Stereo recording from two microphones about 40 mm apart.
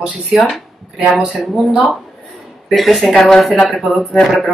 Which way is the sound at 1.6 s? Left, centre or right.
Centre.